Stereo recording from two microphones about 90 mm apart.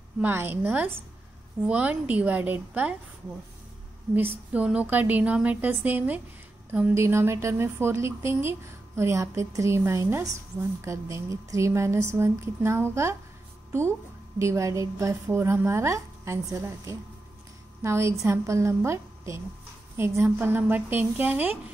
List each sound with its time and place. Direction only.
0.2 s a woman's voice: 25° right (ahead or behind)
4.1 s a woman's voice: 20° right (ahead or behind)
6.9 s a woman's voice: 30° right (ahead or behind)